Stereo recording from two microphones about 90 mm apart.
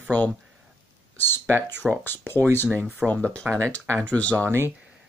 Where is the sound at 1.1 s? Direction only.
25° left (ahead or behind).